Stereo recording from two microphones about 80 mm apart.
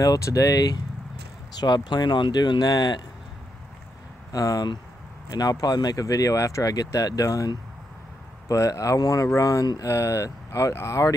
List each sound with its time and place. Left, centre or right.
0.0 s speech: left
1.6 s speech: left
4.3 s speech: left